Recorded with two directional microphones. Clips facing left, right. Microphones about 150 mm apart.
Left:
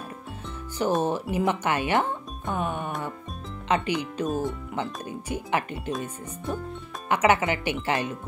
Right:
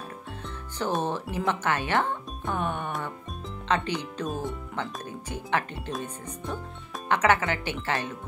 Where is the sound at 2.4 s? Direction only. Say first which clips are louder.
Left 1 dB; 5° left (ahead or behind).